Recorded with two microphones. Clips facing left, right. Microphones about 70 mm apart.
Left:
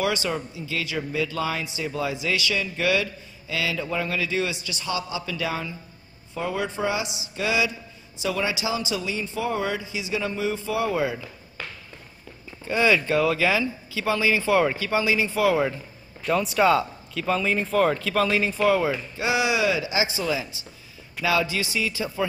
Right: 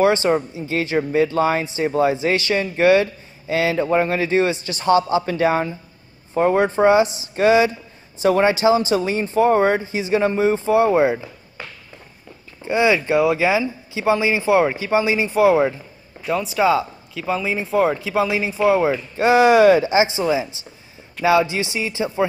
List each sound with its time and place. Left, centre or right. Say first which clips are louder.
0.0 s speech: right 9 dB; right
12.6 s speech: right 4 dB; centre
16.3 s speech: right 2 dB; centre
19.1 s speech: right 12 dB; right